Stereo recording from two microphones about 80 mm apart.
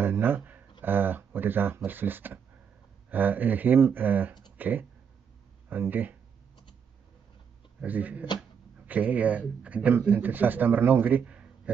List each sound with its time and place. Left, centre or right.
0.0 s speech: right
7.8 s speech: centre